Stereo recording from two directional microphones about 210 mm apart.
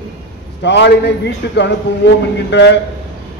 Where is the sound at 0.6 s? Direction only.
55° left (ahead or behind).